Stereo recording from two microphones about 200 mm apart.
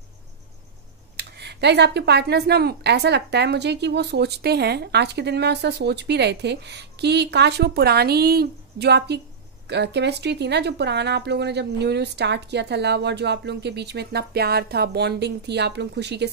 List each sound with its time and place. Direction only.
1.1 s speech: 55° right (ahead or behind)